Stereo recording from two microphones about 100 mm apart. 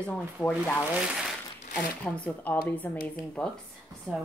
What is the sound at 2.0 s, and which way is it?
Speech, 10° left (ahead or behind).